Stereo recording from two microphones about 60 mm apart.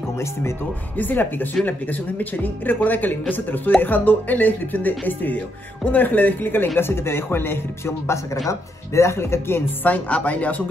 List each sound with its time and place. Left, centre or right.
0.2 s speech: left
0.9 s speech: left
9.8 s speech: left